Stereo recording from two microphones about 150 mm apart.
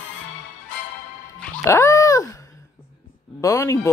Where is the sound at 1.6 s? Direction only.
20° left (ahead or behind).